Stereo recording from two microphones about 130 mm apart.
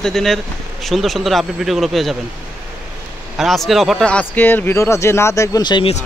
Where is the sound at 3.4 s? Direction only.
Centre (ahead or behind); by 5.9 s 35° left (ahead or behind).